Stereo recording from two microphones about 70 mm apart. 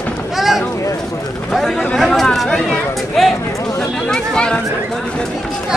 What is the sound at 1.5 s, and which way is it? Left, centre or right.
Chatter, centre.